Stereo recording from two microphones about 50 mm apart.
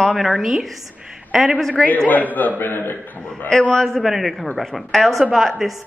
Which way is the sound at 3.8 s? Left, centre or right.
Centre.